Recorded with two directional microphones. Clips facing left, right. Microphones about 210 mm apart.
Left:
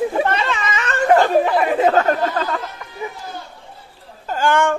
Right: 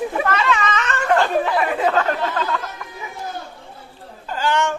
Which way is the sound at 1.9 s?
40° left (ahead or behind).